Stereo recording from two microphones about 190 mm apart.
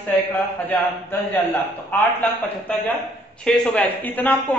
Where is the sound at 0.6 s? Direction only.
10° left (ahead or behind).